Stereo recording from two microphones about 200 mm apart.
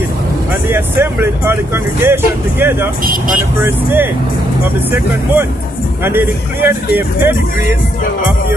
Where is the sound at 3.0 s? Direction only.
45° right (ahead or behind).